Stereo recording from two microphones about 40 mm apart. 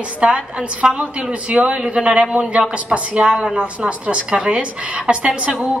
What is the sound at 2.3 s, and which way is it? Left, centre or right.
A woman's voice, right.